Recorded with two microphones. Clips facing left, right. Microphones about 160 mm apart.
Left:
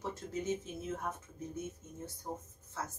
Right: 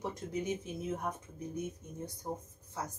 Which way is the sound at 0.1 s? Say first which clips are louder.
Right 1 dB; 15° right (ahead or behind).